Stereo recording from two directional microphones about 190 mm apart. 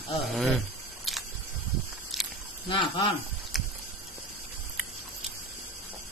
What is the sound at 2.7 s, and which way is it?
Speech, 25° left (ahead or behind).